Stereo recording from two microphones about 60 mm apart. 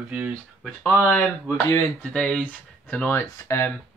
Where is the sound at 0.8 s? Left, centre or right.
Left.